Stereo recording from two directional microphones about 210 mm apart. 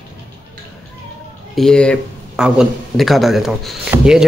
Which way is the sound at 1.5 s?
5° left (ahead or behind).